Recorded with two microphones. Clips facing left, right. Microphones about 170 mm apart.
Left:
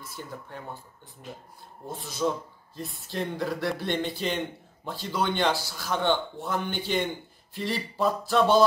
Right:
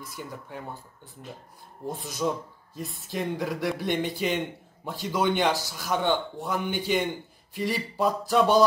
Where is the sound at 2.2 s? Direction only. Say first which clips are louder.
Left 1 dB; 5° right (ahead or behind).